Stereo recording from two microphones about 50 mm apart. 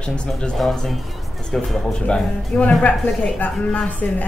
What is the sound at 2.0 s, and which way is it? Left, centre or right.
Speech, left.